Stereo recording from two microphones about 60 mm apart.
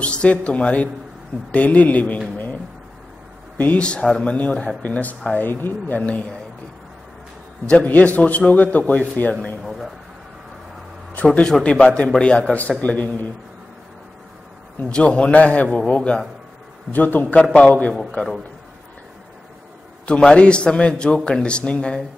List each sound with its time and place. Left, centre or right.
0.0 s speech: centre
3.5 s speech: left
7.7 s speech: left
9.6 s a sound: centre
11.2 s a man's voice: centre
14.9 s a man's voice: centre
20.1 s a man's voice: centre